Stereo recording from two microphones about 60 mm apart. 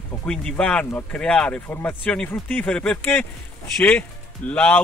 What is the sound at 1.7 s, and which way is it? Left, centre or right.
Speech, left.